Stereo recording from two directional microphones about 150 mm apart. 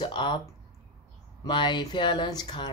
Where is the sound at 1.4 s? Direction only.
30° left (ahead or behind).